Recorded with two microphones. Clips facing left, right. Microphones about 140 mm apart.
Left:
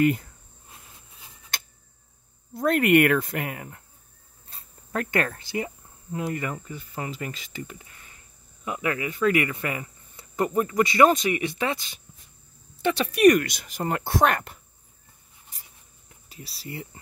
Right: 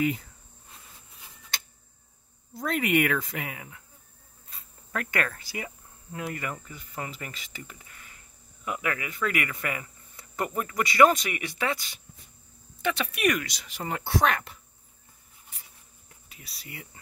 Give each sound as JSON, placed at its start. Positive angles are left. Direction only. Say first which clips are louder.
{"t": 2.5, "sound": "speech", "louder": "left 6 dB", "side_deg": 55}
{"t": 4.5, "sound": "cricket", "louder": "left 4 dB", "side_deg": 30}
{"t": 6.1, "sound": "speech", "louder": "left 5 dB", "side_deg": 25}
{"t": 12.8, "sound": "speech", "louder": "left 9 dB", "side_deg": 35}
{"t": 13.4, "sound": "speech", "louder": "left 6 dB", "side_deg": 55}
{"t": 16.3, "sound": "speech", "louder": "left 8 dB", "side_deg": 30}